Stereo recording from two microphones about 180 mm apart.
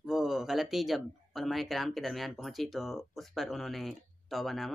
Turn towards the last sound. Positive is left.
turn(degrees=0)  # may be behind; listen again after turning